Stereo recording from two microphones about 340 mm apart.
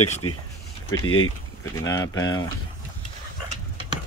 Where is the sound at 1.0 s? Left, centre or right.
Left.